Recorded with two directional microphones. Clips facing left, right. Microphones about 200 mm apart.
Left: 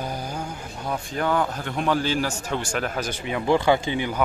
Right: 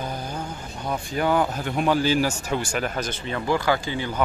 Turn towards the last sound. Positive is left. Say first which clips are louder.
# left 3 dB
turn(degrees=20)  # may be behind; listen again after turning